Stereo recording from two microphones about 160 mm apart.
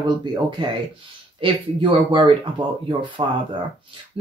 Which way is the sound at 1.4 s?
30° right (ahead or behind).